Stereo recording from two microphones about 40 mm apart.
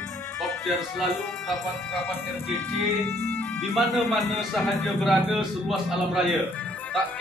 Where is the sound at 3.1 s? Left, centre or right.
Left.